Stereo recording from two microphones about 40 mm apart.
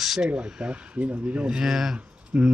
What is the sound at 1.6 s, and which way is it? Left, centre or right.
Speech, centre.